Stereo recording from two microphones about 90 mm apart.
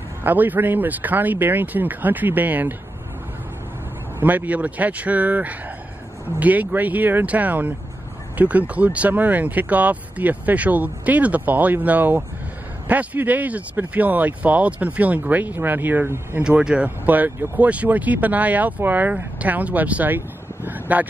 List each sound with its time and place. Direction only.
0.2 s speech: 20° right (ahead or behind)
4.2 s speech: 20° right (ahead or behind)
16.4 s speech: 10° right (ahead or behind)